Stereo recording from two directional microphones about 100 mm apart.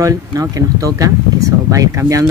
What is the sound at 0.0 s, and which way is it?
Speech, 35° right (ahead or behind).